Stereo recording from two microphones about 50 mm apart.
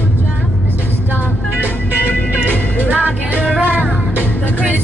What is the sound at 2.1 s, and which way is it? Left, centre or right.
Music, left.